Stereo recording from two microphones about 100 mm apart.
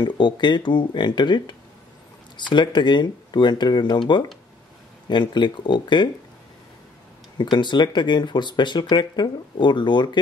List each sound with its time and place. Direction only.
0.0 s speech: 50° left (ahead or behind)
5.0 s speech: 50° left (ahead or behind)
7.3 s speech: 50° left (ahead or behind)